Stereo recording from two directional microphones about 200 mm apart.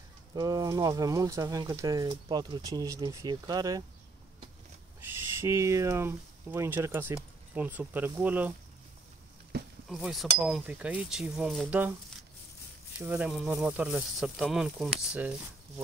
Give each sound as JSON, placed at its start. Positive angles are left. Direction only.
{"t": 0.3, "sound": "speech", "side_deg": -20}
{"t": 5.0, "sound": "speech", "side_deg": -10}
{"t": 9.8, "sound": "speech", "side_deg": 0}
{"t": 13.0, "sound": "speech", "side_deg": -10}